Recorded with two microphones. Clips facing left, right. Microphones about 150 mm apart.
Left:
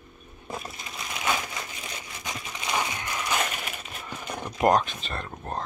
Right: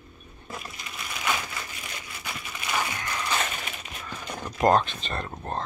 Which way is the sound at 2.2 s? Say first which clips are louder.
Left 2 dB; 20° left (ahead or behind).